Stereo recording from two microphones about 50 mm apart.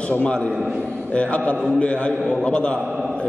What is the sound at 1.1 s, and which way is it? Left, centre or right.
A man's voice, left.